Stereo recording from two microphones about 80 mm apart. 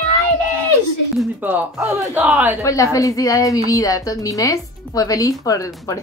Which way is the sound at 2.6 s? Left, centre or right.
Left.